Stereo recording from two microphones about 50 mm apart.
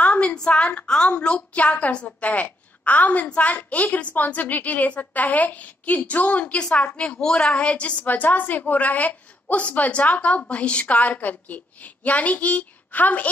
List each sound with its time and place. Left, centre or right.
0.0 s a woman's voice: left
7.5 s a woman's voice: left